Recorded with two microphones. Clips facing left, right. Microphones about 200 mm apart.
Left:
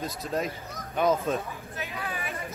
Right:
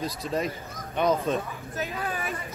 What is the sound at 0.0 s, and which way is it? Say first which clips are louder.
A man's voice: right 2 dB; centre (ahead or behind).